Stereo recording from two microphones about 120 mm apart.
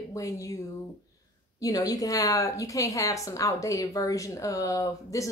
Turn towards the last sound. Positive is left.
turn(degrees=25)  # may be behind; listen again after turning